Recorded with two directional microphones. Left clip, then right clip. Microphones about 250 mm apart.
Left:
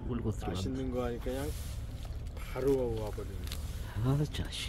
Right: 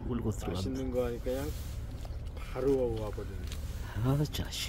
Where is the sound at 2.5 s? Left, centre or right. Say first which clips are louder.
Right 1 dB; centre.